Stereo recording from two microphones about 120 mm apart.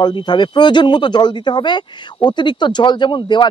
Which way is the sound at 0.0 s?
40° left (ahead or behind).